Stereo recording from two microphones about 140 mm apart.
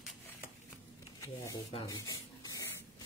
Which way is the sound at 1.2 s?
20° left (ahead or behind).